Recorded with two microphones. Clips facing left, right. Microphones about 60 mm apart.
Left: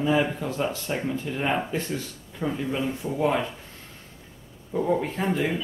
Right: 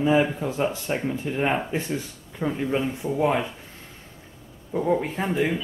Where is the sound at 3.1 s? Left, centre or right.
Centre.